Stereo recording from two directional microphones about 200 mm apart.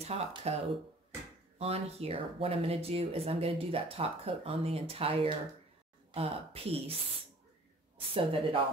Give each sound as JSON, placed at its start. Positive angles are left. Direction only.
{"t": 0.0, "sound": "speech", "side_deg": -30}
{"t": 1.6, "sound": "speech", "side_deg": -30}
{"t": 8.1, "sound": "speech", "side_deg": -25}